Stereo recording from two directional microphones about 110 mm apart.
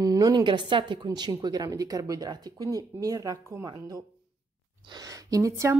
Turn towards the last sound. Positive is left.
turn(degrees=-30)  # may be behind; listen again after turning